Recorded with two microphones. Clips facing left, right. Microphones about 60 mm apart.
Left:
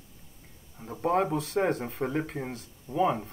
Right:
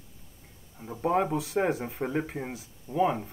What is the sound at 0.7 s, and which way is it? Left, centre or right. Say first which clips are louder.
A man's voice: even; centre.